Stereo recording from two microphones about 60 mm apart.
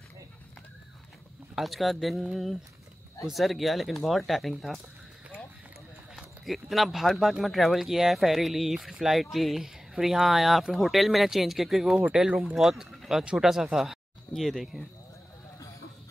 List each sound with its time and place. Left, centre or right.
1.5 s speech: centre
6.1 s speech: centre
12.0 s speech: centre
12.5 s speech: centre
13.2 s speech: centre